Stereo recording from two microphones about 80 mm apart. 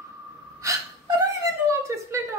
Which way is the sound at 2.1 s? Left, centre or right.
Right.